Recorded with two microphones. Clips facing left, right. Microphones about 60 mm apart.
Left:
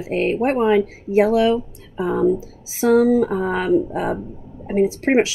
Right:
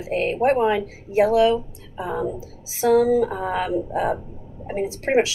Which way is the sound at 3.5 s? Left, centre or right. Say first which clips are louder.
Left 5 dB; left.